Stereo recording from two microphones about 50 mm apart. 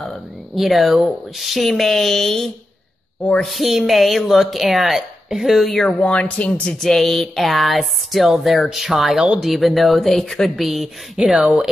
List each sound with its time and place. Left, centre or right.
0.6 s speech: centre
5.9 s speech: centre
6.2 s speech: left
6.8 s speech: centre
10.6 s speech: centre
11.1 s speech: centre